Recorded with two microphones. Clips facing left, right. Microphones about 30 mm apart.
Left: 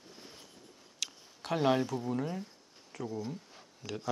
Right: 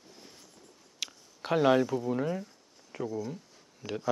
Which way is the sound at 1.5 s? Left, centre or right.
Centre.